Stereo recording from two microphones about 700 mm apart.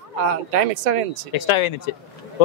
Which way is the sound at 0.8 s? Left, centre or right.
Right.